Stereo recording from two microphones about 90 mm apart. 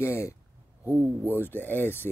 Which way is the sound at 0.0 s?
30° left (ahead or behind).